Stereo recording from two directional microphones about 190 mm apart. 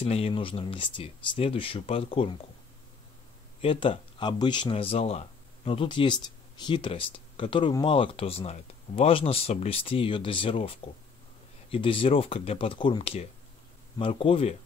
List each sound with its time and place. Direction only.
0.0 s speech: 30° left (ahead or behind)
3.6 s speech: 30° left (ahead or behind)